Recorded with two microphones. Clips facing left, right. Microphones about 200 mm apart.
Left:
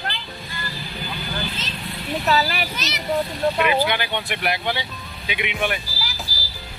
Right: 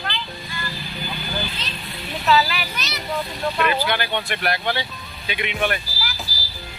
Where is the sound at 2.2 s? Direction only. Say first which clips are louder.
Right 3 dB; 40° left (ahead or behind).